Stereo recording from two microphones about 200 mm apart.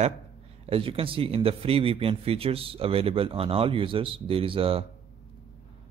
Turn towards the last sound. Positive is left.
turn(degrees=-30)  # may be behind; listen again after turning